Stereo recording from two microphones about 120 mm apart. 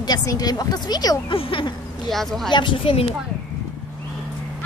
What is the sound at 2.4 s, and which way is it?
Speech, 40° left (ahead or behind).